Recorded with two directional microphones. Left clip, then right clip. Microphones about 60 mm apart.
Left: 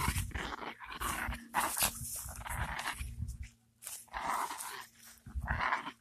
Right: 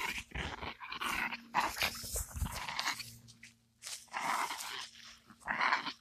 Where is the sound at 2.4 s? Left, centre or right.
Left.